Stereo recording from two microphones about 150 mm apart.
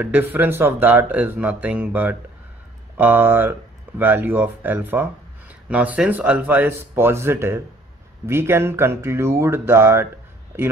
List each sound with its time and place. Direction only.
0.0 s speech: 15° right (ahead or behind)